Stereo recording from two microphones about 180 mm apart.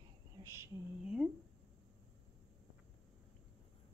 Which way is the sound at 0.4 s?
15° right (ahead or behind).